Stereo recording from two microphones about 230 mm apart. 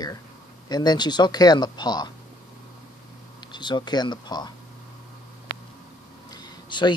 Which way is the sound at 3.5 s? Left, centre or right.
Centre.